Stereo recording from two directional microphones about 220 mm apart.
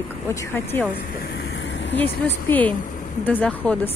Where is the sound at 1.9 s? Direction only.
10° left (ahead or behind).